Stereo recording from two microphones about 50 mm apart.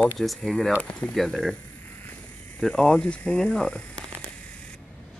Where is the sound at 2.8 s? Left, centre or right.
Left.